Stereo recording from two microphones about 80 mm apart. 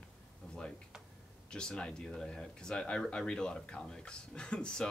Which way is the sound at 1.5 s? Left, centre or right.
Centre.